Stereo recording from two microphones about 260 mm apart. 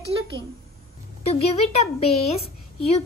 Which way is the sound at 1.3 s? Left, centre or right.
Left.